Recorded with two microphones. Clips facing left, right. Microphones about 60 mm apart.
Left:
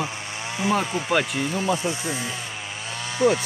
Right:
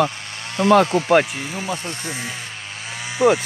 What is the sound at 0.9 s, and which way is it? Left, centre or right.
Speech, right.